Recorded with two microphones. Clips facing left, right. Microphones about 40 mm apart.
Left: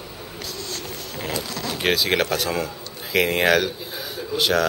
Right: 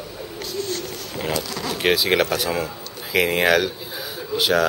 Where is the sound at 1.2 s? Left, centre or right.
Centre.